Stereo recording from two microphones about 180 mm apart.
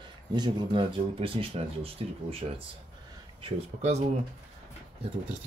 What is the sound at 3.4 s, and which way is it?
Speech, 35° right (ahead or behind).